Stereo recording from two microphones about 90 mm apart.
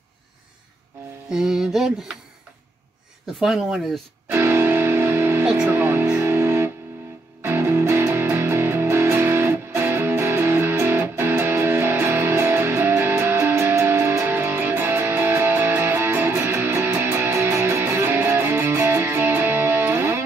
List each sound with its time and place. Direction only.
1.3 s a sound: 5° right (ahead or behind)
3.3 s speech: centre (ahead or behind)
4.3 s music: 30° right (ahead or behind)